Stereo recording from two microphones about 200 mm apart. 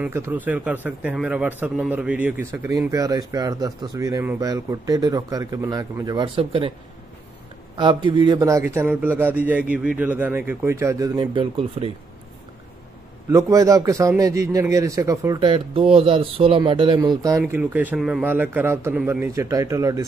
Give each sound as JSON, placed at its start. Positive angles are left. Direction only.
{"t": 0.0, "sound": "a man's voice", "side_deg": -10}
{"t": 7.7, "sound": "a man's voice", "side_deg": -25}
{"t": 13.3, "sound": "a man's voice", "side_deg": -15}